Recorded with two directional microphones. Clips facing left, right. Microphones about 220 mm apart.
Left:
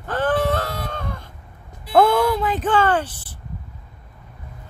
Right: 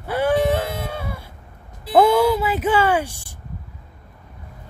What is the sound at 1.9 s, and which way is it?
Speech, 10° right (ahead or behind).